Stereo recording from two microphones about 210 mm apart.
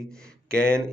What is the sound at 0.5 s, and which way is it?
Speech, 10° right (ahead or behind).